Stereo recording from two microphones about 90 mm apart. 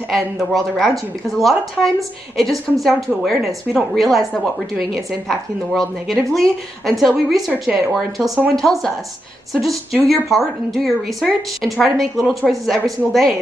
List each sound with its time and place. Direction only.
0.1 s a woman's voice: centre (ahead or behind)